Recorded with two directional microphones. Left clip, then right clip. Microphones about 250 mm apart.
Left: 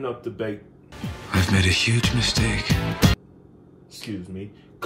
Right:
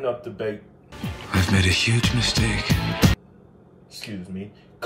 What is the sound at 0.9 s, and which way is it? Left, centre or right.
Speech, centre.